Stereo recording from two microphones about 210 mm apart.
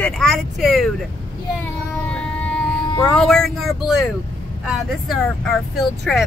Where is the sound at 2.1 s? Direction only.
5° left (ahead or behind).